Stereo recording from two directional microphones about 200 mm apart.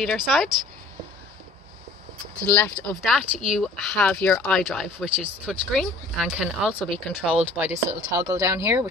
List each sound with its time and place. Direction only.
0.0 s speech: centre (ahead or behind)
2.4 s speech: 10° left (ahead or behind); by 8.8 s 15° right (ahead or behind)